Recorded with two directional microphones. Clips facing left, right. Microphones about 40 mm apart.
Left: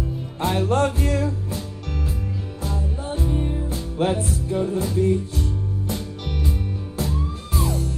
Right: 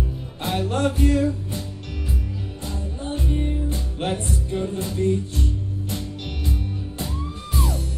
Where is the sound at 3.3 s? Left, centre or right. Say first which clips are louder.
Even; centre.